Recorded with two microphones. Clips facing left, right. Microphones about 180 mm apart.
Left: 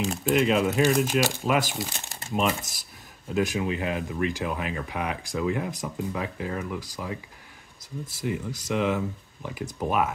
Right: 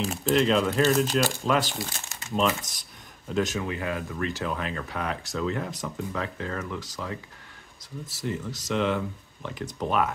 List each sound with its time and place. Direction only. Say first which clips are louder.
0.2 s speech: even; 10° left (ahead or behind)
8.2 s speech: left 1 dB; 10° left (ahead or behind)